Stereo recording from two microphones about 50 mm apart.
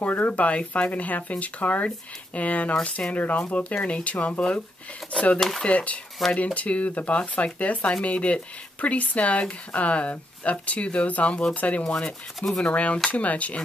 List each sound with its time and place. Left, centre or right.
0.0 s speech: left
5.6 s speech: left
11.8 s speech: centre
12.6 s speech: left